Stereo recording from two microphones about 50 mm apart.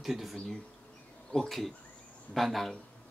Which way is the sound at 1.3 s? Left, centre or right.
Centre.